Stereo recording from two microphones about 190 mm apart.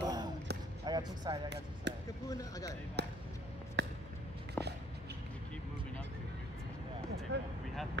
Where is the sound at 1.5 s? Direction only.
70° right (ahead or behind).